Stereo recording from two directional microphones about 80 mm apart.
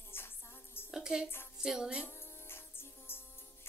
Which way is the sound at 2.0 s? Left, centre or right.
Left.